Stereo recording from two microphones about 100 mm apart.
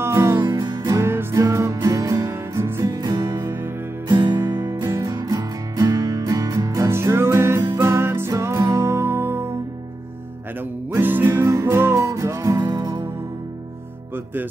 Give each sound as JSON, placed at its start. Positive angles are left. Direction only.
{"t": 0.0, "sound": "music", "side_deg": -25}
{"t": 0.4, "sound": "music", "side_deg": -50}
{"t": 1.3, "sound": "music", "side_deg": -30}
{"t": 3.4, "sound": "music", "side_deg": -20}
{"t": 4.1, "sound": "music", "side_deg": -50}
{"t": 6.9, "sound": "music", "side_deg": -25}
{"t": 10.6, "sound": "music", "side_deg": -20}
{"t": 14.1, "sound": "music", "side_deg": -20}